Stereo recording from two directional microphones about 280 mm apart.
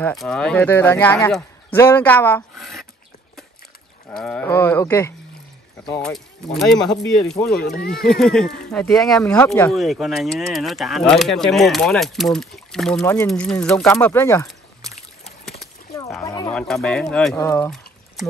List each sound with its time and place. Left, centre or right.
0.0 s speech: centre
4.2 s speech: centre
7.6 s speech: left
7.9 s speech: centre
16.2 s speech: centre